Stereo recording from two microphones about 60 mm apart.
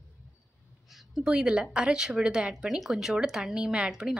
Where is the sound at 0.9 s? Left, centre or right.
Centre.